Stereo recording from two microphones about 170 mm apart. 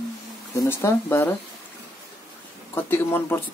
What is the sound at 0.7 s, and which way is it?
Speech, 15° left (ahead or behind).